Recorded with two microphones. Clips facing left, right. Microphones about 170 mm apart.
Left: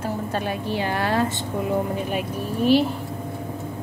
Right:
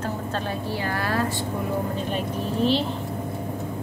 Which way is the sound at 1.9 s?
10° left (ahead or behind).